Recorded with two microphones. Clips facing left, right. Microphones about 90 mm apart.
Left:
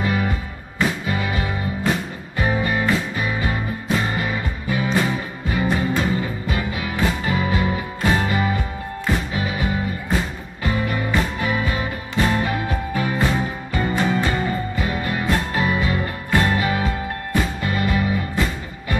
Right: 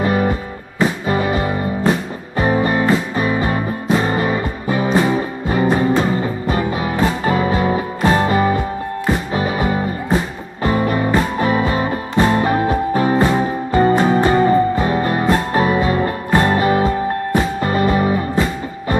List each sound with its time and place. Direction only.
0.0 s music: 35° right (ahead or behind)